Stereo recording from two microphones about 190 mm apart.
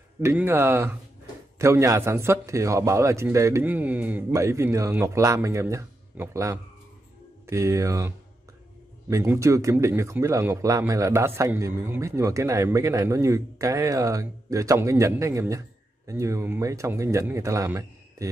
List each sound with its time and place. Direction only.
0.2 s a man's voice: 10° right (ahead or behind)
9.1 s a man's voice: 15° right (ahead or behind)